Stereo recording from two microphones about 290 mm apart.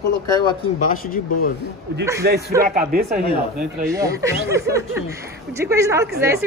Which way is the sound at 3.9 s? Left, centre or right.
Centre.